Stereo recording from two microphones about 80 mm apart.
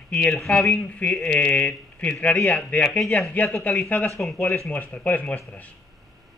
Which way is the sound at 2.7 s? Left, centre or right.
Centre.